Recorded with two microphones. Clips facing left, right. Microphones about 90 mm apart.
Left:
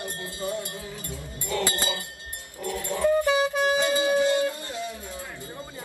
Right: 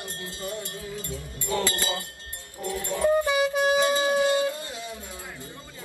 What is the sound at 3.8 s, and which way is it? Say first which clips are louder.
Music: even; 25° right (ahead or behind).